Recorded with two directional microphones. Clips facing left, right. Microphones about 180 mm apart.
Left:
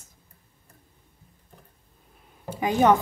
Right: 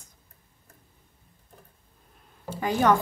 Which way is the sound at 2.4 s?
15° left (ahead or behind).